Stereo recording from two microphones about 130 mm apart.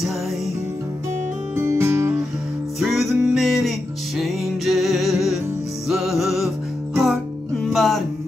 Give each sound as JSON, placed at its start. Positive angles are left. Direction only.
{"t": 1.5, "sound": "music", "side_deg": -20}
{"t": 2.8, "sound": "music", "side_deg": 0}